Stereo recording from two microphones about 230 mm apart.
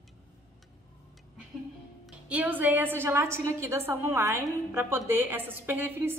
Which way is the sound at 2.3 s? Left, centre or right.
Centre.